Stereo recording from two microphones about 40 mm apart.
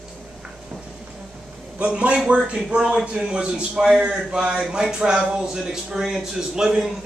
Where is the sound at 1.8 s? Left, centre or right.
Right.